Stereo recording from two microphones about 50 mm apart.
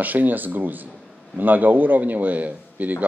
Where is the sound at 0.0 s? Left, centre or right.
Right.